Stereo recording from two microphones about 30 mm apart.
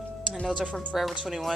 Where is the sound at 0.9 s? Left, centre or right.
Centre.